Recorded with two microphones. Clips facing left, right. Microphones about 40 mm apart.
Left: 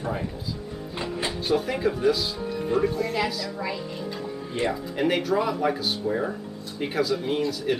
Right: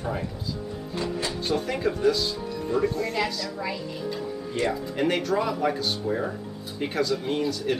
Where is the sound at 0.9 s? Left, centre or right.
Left.